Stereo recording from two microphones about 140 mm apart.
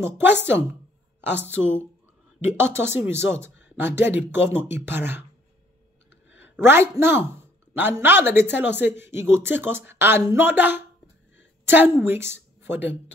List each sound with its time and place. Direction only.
0.0 s a woman's voice: 15° right (ahead or behind)
6.3 s a woman's voice: 15° right (ahead or behind)